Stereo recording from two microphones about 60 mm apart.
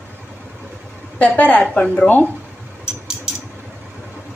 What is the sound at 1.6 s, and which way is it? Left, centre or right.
Speech, centre.